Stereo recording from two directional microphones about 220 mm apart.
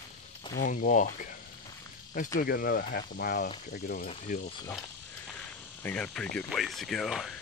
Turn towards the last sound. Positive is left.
turn(degrees=0)  # may be behind; listen again after turning